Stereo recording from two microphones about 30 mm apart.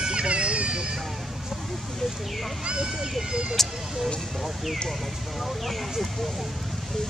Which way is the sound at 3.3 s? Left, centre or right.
Right.